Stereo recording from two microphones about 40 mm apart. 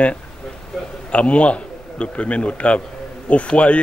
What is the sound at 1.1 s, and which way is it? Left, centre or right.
A man's voice, left.